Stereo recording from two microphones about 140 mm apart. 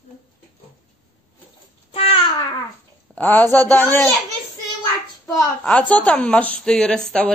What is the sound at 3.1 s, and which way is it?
Speech, 10° left (ahead or behind).